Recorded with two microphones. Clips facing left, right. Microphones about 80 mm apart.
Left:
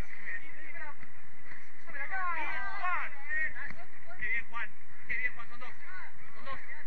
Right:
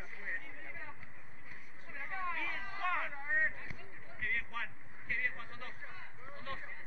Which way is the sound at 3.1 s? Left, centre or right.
Right.